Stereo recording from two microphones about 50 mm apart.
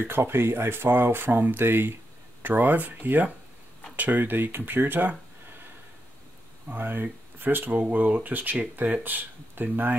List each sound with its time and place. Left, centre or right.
0.0 s speech: right
2.4 s speech: right
6.7 s speech: right